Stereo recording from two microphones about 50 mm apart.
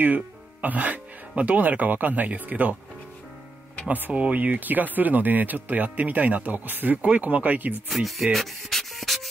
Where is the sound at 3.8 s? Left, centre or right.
Right.